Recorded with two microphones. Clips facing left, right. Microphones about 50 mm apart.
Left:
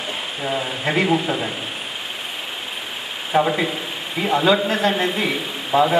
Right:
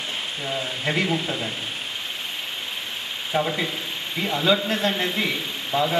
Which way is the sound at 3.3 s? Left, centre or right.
Left.